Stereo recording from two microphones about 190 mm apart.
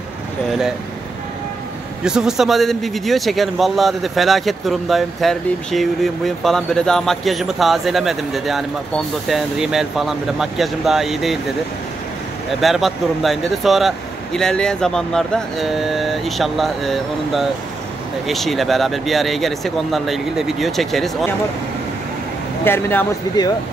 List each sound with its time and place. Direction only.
0.5 s speech: centre (ahead or behind)
2.0 s speech: 5° right (ahead or behind)
12.5 s speech: centre (ahead or behind)
22.7 s speech: 10° left (ahead or behind)